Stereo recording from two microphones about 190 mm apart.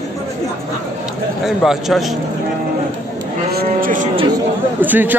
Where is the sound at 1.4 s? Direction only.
Centre (ahead or behind).